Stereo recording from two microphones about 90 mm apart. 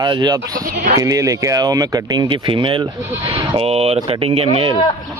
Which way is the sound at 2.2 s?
65° right (ahead or behind).